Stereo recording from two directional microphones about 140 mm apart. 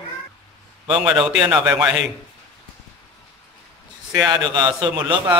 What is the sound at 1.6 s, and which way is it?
Speech, 10° right (ahead or behind).